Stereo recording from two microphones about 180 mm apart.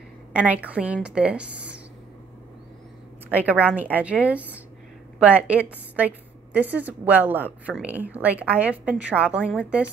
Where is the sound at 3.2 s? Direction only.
10° right (ahead or behind).